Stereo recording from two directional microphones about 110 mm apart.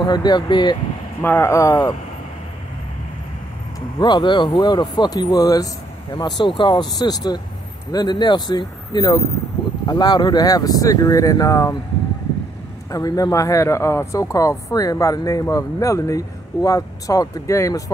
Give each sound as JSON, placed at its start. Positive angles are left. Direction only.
{"t": 0.0, "sound": "speech", "side_deg": 40}
{"t": 1.2, "sound": "speech", "side_deg": 20}
{"t": 4.0, "sound": "speech", "side_deg": 45}
{"t": 12.9, "sound": "speech", "side_deg": 35}